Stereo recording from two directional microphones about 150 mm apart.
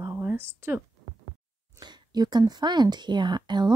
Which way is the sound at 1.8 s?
25° right (ahead or behind).